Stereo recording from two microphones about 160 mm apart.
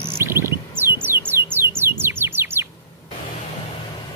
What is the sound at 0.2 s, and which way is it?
Bird, 15° right (ahead or behind).